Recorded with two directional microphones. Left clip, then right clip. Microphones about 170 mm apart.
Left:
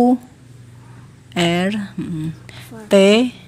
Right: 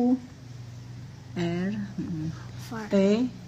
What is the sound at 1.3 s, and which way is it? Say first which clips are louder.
Speech: left 13 dB; 35° left (ahead or behind).